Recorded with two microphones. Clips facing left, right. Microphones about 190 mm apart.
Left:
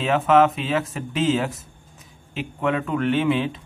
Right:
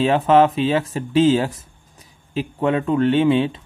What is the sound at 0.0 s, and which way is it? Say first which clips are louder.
Speech: right 3 dB; 30° right (ahead or behind).